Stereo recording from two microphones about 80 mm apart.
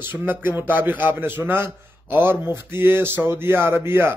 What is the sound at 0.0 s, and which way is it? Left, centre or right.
A man's voice, right.